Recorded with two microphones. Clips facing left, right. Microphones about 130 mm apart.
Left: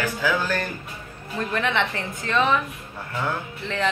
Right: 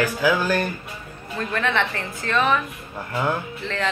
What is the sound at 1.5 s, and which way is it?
A woman's voice, 15° left (ahead or behind).